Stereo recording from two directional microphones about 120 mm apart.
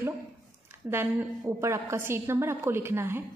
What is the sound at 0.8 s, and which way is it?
A woman's voice, 20° right (ahead or behind).